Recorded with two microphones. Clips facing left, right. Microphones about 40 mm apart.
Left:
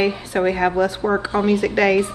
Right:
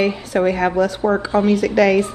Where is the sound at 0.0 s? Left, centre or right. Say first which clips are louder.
Right 2 dB; centre.